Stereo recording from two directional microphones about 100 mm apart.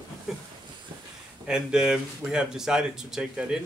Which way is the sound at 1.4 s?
5° right (ahead or behind).